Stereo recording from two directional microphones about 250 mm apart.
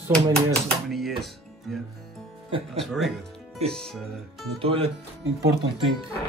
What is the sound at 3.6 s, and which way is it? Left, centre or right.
Speech, right.